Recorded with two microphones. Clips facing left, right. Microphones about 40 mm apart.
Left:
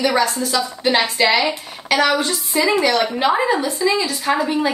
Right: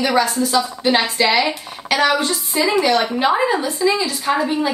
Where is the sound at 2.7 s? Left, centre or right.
Centre.